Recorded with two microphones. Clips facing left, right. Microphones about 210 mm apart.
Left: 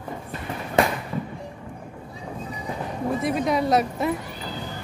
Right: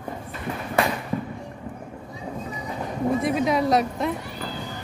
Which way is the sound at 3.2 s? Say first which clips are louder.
Left 2 dB; centre (ahead or behind).